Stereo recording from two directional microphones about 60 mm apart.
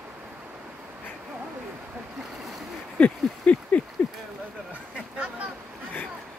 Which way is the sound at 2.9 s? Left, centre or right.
Left.